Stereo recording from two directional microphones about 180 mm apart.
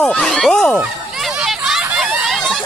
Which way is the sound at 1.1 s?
Centre (ahead or behind).